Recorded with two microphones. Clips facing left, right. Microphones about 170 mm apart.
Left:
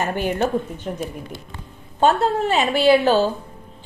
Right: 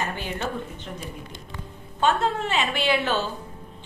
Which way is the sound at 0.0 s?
45° left (ahead or behind).